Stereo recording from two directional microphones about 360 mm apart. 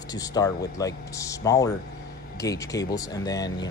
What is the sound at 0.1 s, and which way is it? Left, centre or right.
Speech, centre.